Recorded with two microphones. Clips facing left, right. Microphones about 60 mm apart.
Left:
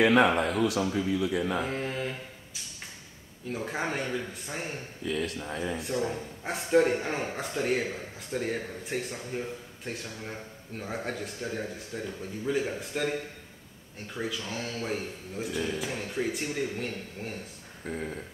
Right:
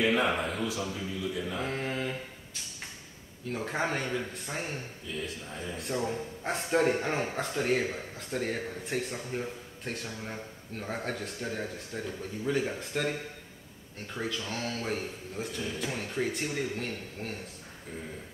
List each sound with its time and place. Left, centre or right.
0.0 s speech: left
1.7 s mantra: centre
3.5 s a man's voice: centre
5.0 s speech: left
5.8 s a man's voice: centre
14.1 s a man's voice: centre